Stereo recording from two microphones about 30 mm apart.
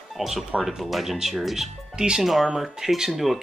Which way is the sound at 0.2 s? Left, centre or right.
Centre.